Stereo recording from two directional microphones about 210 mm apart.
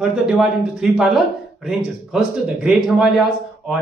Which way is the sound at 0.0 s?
Centre (ahead or behind).